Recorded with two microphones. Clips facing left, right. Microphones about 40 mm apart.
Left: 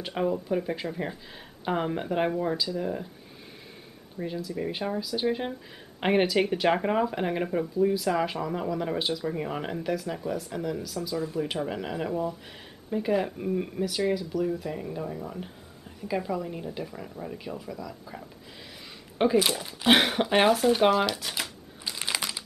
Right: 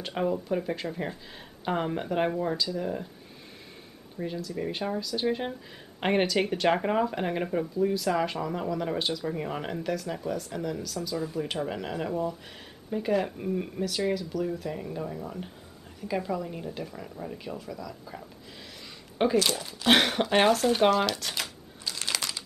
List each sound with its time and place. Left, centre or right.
0.0 s speech: centre
4.2 s speech: centre
19.3 s speech: centre
21.9 s crumpling: centre